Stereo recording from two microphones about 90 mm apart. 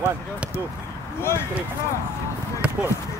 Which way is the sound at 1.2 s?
30° left (ahead or behind).